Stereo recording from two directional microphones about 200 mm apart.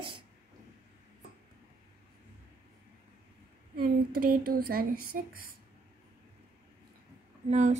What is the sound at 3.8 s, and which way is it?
Speech, 45° right (ahead or behind).